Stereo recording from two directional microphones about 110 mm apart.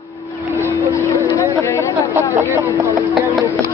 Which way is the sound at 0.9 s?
25° left (ahead or behind).